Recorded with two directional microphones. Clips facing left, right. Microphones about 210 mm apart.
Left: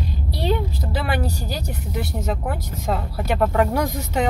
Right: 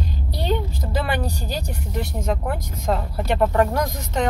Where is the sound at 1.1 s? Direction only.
5° left (ahead or behind).